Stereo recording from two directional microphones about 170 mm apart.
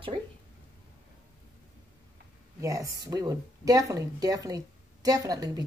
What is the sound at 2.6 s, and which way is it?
A woman's voice, 20° right (ahead or behind).